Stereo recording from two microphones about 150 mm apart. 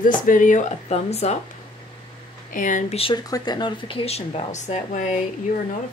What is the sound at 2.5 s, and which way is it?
Speech, 60° left (ahead or behind).